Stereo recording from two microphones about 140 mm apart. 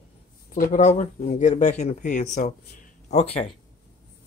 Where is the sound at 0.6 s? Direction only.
65° left (ahead or behind); by 3.4 s 50° left (ahead or behind).